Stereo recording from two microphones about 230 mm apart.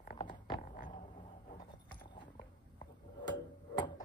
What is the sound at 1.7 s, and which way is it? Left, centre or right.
Clip-clop, centre.